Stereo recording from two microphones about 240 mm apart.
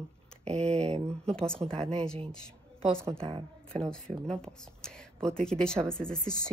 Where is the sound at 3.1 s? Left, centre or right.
Right.